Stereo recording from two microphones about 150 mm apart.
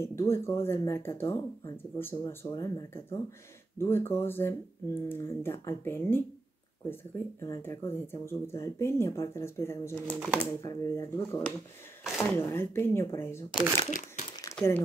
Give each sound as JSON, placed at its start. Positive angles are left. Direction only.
{"t": 0.3, "sound": "speech", "side_deg": 15}
{"t": 10.1, "sound": "speech", "side_deg": -5}
{"t": 10.4, "sound": "speech", "side_deg": 20}
{"t": 12.0, "sound": "speech", "side_deg": 0}
{"t": 12.4, "sound": "speech", "side_deg": 15}
{"t": 13.5, "sound": "speech", "side_deg": -10}
{"t": 13.8, "sound": "speech", "side_deg": 55}
{"t": 14.6, "sound": "speech", "side_deg": 5}